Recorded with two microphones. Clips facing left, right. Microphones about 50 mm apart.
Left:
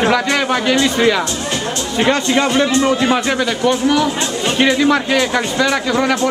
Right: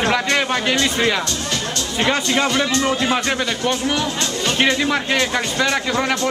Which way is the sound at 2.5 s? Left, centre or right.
Centre.